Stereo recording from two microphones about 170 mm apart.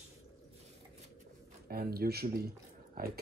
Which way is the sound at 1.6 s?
65° right (ahead or behind).